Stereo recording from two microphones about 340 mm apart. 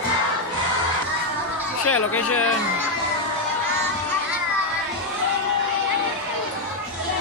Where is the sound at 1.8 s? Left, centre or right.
Left.